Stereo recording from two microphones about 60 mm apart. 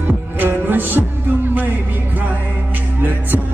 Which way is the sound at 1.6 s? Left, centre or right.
Right.